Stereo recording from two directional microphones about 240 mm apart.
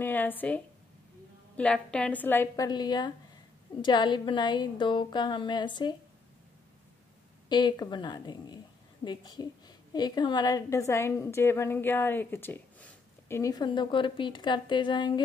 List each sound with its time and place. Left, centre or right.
0.0 s a woman's voice: centre
1.6 s a woman's voice: centre
7.4 s a woman's voice: centre